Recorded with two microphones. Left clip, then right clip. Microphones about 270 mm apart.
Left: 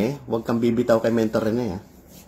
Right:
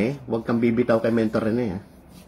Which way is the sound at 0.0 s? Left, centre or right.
Centre.